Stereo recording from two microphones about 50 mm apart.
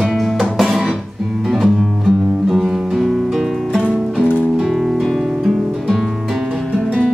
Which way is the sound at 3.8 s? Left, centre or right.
Right.